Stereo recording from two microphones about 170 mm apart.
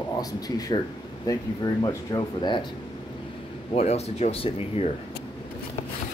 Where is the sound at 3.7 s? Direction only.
40° left (ahead or behind).